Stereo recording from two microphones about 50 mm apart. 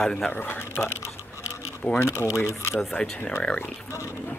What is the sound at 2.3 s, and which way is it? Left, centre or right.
Speech, left.